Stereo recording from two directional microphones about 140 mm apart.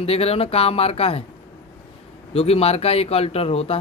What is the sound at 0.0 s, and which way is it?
Speech, 45° left (ahead or behind).